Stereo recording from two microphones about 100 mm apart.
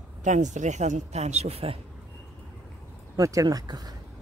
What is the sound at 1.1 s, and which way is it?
Speech, 90° right.